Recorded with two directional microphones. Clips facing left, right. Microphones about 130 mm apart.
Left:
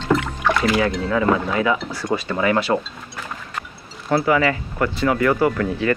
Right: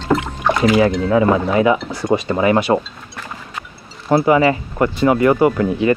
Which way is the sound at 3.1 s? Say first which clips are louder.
Even; centre (ahead or behind).